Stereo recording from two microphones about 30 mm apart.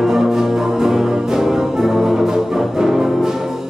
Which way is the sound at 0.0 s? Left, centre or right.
Centre.